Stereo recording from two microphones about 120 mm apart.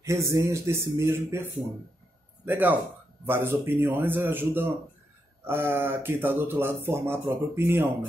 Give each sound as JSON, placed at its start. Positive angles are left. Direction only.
{"t": 0.0, "sound": "a man's voice", "side_deg": -25}